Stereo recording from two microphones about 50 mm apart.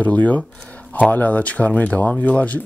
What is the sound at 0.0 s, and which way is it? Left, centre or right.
Speech, left.